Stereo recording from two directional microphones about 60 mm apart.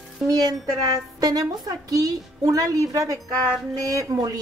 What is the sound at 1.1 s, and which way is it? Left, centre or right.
A woman's voice, right.